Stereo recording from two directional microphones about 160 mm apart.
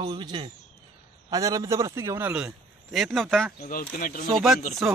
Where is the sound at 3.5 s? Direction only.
60° left (ahead or behind).